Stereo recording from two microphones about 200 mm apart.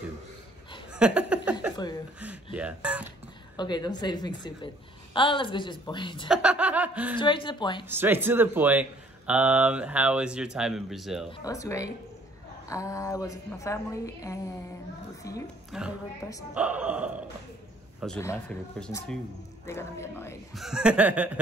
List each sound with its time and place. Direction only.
0.9 s a sound: 5° right (ahead or behind)
2.1 s speech: 5° right (ahead or behind)
3.5 s a woman's voice: 20° left (ahead or behind)
6.2 s chuckle: 5° right (ahead or behind)
7.2 s a woman's voice: 25° left (ahead or behind)
7.9 s speech: 10° right (ahead or behind)
11.2 s a woman's voice: 20° left (ahead or behind)
15.7 s speech: centre (ahead or behind)
18.2 s a woman's voice: 15° left (ahead or behind)
20.5 s speech: 5° right (ahead or behind)